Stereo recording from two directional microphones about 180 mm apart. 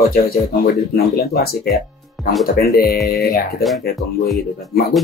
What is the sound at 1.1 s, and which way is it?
Speech, 60° left (ahead or behind).